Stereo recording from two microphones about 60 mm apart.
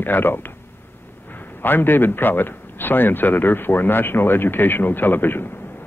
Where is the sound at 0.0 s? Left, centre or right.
Left.